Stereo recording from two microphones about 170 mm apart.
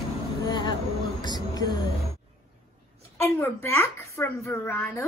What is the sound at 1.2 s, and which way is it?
Music, 25° left (ahead or behind).